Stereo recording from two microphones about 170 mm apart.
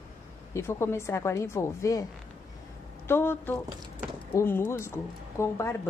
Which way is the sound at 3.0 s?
15° left (ahead or behind).